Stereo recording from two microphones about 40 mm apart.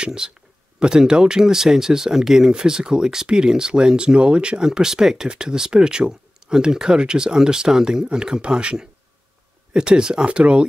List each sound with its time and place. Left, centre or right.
0.0 s speech: right